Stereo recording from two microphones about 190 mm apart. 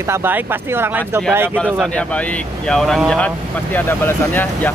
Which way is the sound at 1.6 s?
5° left (ahead or behind).